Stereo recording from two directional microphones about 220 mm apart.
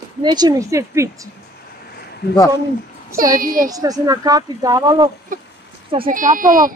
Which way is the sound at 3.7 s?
15° right (ahead or behind).